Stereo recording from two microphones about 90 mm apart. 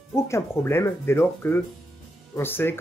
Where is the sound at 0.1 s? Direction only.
30° left (ahead or behind).